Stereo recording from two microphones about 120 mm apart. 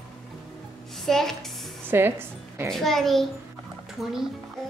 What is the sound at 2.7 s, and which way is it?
A child's voice, centre (ahead or behind).